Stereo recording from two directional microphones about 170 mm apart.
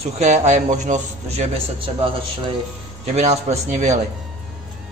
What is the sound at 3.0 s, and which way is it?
A man's voice, 40° right (ahead or behind).